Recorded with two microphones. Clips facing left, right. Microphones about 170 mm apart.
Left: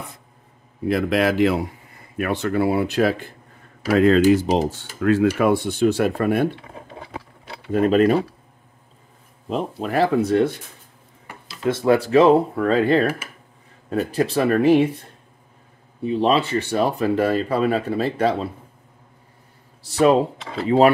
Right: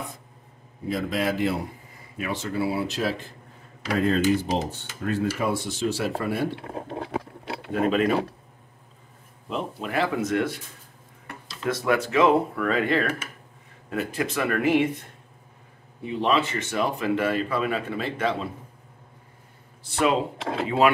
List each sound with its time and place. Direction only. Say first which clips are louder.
0.8 s speech: left 7 dB; 75° left (ahead or behind); by 1.7 s 90° left
2.1 s speech: left 7 dB; 60° left (ahead or behind)
4.0 s cutlery: left 7 dB; 90° left
5.4 s speech: left 8 dB; 60° left (ahead or behind)
6.9 s a sound: right 6 dB; 55° right (ahead or behind)
7.7 s speech: left 6 dB; 45° left (ahead or behind)
9.5 s speech: left 6 dB; 40° left (ahead or behind)
11.6 s speech: left 6 dB; 30° left (ahead or behind)
16.1 s speech: left 5 dB; 35° left (ahead or behind)
19.8 s speech: left 7 dB; 40° left (ahead or behind)